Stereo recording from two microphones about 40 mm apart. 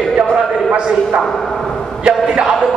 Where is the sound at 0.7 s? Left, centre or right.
Right.